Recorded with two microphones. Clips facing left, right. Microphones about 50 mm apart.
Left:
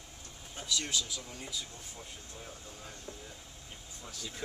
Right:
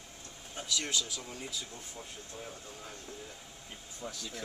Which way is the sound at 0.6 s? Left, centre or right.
Centre.